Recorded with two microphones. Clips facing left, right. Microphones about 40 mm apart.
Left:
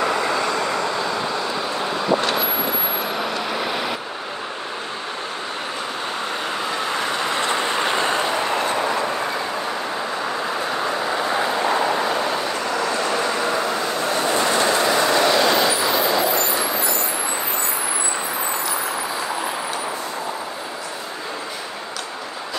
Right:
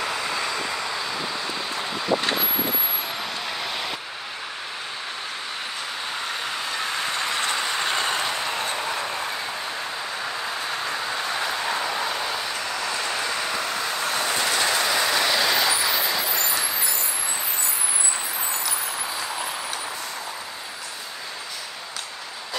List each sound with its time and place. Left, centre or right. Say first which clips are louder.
0.0 s vehicle: left 6 dB; centre
3.2 s vehicle: left 6 dB; centre
7.2 s train: left 4 dB; left
10.7 s train: left 5 dB; left
11.3 s vehicle: left 7 dB; centre
11.7 s vehicle: left 6 dB; left
13.5 s vehicle: left 5 dB; left
13.8 s train: left 4 dB; left; by 16.0 s centre
16.0 s vehicle: left 6 dB; left